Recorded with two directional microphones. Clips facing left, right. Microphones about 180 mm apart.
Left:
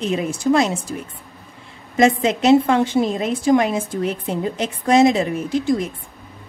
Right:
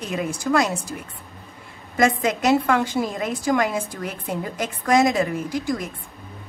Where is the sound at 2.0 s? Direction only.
25° left (ahead or behind).